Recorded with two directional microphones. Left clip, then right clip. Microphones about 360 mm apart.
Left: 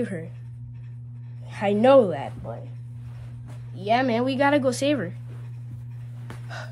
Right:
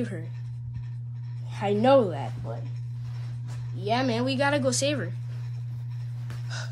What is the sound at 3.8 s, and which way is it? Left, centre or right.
Speech, centre.